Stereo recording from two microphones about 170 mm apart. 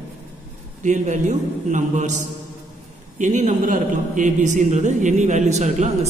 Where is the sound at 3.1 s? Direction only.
45° right (ahead or behind).